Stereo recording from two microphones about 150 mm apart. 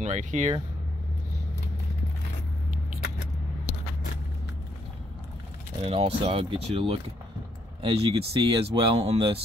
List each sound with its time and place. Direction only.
0.0 s speech: 55° right (ahead or behind)
5.9 s speech: 40° right (ahead or behind)